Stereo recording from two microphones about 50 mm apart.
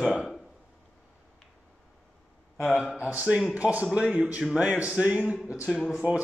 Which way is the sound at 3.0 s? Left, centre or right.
Right.